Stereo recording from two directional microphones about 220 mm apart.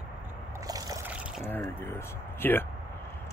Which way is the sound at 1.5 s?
10° left (ahead or behind).